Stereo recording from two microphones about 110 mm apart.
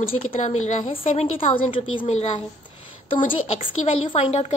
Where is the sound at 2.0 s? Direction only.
90° left.